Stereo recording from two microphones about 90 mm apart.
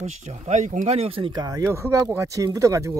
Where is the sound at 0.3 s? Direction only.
90° right.